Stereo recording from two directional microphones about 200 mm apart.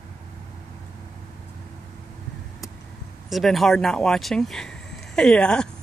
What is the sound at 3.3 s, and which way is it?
Speech, centre (ahead or behind).